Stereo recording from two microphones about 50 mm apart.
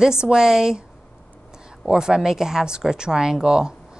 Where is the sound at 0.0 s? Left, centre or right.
Centre.